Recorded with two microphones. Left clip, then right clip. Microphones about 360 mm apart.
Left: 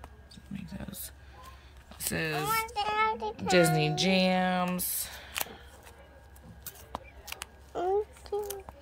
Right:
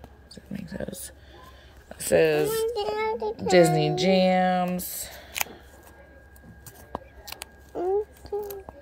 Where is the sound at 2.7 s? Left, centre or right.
Left.